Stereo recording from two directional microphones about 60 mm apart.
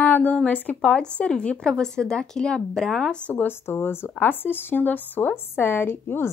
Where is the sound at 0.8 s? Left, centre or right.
Centre.